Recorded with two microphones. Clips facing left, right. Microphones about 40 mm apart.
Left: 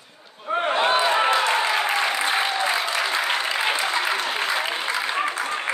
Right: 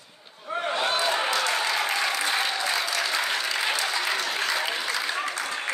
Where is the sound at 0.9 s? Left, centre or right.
Left.